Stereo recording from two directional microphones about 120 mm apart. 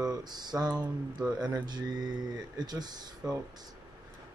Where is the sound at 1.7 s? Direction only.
35° right (ahead or behind).